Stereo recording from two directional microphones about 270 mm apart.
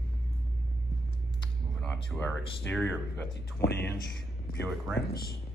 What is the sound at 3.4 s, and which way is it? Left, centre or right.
Speech, left.